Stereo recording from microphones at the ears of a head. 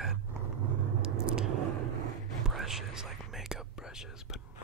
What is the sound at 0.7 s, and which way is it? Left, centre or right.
Vehicle, right.